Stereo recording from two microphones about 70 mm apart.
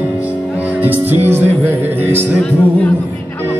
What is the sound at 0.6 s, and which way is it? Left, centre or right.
Music, right.